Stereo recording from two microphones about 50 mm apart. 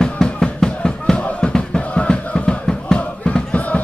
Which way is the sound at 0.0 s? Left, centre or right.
Centre.